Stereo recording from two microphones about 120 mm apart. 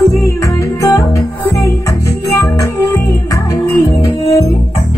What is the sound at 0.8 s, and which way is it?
Music, 25° left (ahead or behind).